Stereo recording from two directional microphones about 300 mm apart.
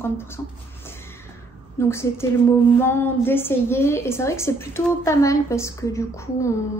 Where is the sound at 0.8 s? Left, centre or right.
Centre.